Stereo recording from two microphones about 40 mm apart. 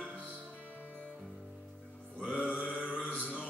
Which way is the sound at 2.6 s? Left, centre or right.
Left.